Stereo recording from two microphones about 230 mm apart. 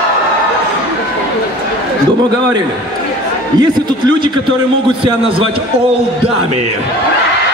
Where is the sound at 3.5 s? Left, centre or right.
Centre.